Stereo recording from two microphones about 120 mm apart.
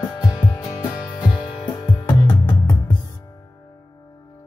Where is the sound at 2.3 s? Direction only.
25° left (ahead or behind).